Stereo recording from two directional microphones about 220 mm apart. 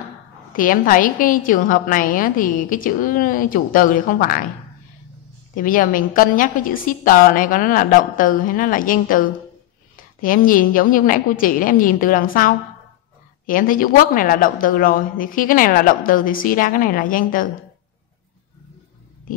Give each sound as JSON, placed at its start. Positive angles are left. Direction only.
{"t": 0.5, "sound": "a woman's voice", "side_deg": 40}
{"t": 5.5, "sound": "a woman's voice", "side_deg": 40}
{"t": 10.2, "sound": "a woman's voice", "side_deg": 40}